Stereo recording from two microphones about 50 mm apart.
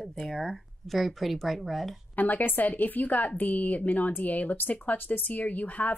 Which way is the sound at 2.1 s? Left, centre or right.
Left.